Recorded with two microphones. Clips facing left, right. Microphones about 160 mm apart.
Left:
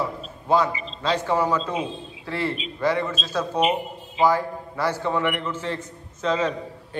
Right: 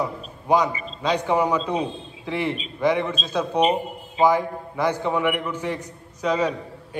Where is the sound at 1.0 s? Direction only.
15° right (ahead or behind).